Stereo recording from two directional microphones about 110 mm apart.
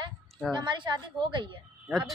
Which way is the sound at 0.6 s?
45° right (ahead or behind).